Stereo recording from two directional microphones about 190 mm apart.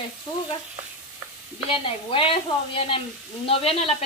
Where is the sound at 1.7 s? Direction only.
30° left (ahead or behind).